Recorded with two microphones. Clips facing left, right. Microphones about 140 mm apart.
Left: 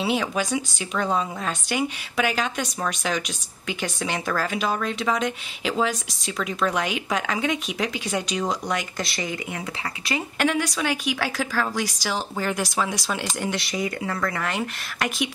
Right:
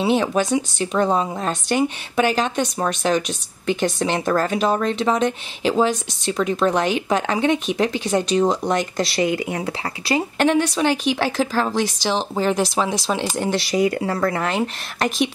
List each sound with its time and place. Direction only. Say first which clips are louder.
0.0 s speech: right 6 dB; 25° right (ahead or behind)